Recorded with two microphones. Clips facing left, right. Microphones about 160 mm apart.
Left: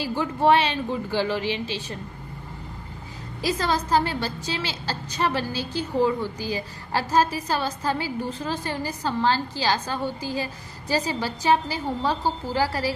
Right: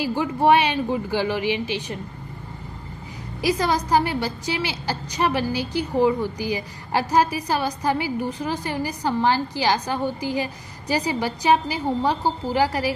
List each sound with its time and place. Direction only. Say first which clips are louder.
0.0 s a woman's voice: right 2 dB; 15° right (ahead or behind)
3.3 s a woman's voice: right 3 dB; 15° right (ahead or behind)